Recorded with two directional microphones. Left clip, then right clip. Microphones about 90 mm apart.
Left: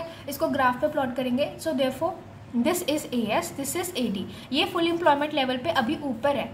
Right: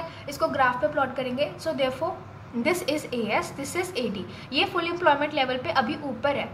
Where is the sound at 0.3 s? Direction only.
20° left (ahead or behind).